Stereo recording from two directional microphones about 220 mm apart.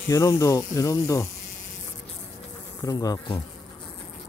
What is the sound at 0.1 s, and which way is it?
Speech, 15° left (ahead or behind).